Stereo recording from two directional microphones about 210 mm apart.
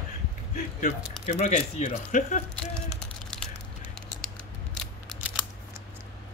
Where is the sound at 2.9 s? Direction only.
5° left (ahead or behind).